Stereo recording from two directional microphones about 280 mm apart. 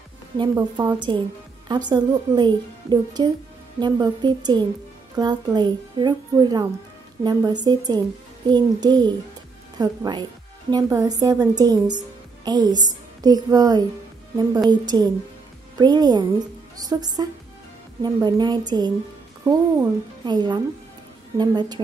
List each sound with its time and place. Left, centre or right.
0.4 s a child's voice: centre